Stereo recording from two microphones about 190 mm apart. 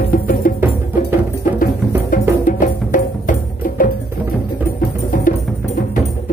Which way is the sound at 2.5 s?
45° left (ahead or behind).